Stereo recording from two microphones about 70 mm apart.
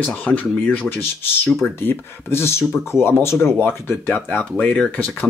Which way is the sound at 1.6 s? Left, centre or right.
Left.